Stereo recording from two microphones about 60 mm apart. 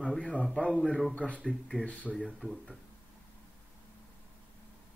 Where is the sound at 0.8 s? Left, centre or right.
Centre.